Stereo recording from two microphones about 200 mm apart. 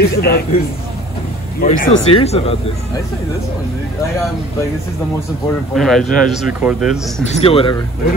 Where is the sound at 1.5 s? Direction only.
45° left (ahead or behind).